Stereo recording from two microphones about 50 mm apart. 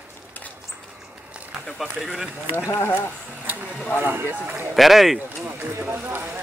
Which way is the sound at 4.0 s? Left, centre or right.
Right.